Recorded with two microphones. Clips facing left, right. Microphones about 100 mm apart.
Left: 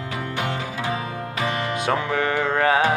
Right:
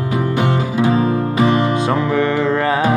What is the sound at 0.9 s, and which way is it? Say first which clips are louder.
Music: right 12 dB; 30° right (ahead or behind).